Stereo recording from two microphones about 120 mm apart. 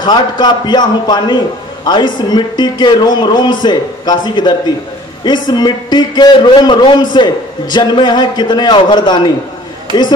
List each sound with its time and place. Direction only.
0.0 s speech: 35° left (ahead or behind)